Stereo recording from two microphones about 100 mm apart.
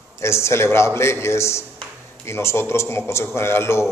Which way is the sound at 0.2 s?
25° left (ahead or behind).